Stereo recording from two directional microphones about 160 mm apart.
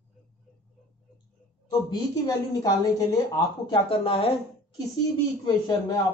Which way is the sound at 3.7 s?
35° left (ahead or behind).